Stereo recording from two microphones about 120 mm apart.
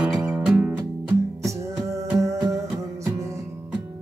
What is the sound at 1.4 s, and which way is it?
Music, 25° right (ahead or behind).